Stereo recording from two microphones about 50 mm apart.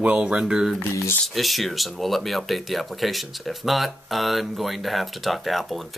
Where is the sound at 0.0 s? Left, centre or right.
Right.